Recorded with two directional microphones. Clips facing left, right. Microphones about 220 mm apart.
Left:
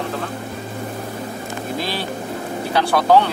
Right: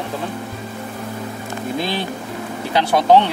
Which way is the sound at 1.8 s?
20° right (ahead or behind).